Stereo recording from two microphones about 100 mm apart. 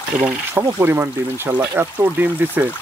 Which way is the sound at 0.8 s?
25° right (ahead or behind).